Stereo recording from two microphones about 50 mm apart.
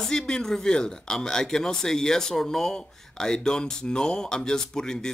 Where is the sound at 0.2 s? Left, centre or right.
Centre.